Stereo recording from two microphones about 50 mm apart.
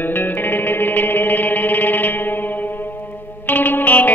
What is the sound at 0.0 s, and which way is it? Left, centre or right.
Music, left.